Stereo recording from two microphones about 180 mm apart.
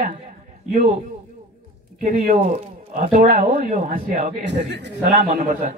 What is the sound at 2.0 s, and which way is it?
A man's voice, 50° right (ahead or behind).